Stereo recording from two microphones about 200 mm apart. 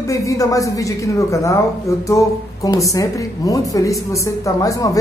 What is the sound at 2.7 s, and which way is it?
A woman's voice, 15° left (ahead or behind).